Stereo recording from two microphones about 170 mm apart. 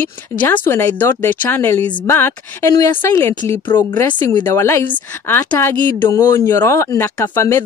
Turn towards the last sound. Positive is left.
turn(degrees=15)  # may be behind; listen again after turning